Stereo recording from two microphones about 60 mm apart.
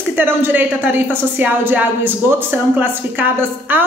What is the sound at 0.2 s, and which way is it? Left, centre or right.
Speech, right.